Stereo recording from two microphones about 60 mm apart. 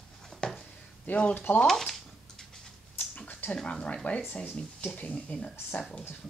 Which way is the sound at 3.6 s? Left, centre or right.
Left.